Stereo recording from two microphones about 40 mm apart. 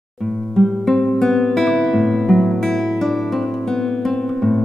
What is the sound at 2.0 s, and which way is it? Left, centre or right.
Music, centre.